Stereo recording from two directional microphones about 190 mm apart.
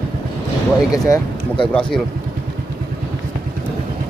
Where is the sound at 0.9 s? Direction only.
20° left (ahead or behind).